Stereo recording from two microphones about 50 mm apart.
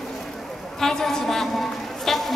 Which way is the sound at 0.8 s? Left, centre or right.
Centre.